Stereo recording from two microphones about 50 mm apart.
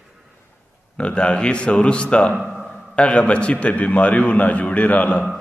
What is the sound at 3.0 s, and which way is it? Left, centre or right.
A man's voice, left.